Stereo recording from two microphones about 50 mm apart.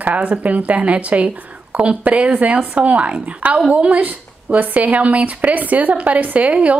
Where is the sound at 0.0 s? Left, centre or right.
Right.